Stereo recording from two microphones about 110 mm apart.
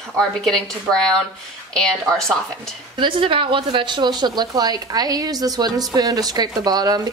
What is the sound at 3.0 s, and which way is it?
Speech, 50° right (ahead or behind).